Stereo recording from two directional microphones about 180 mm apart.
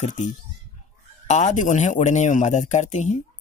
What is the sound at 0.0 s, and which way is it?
Speech, 45° left (ahead or behind).